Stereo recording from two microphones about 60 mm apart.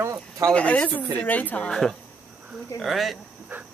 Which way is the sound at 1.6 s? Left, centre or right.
Centre.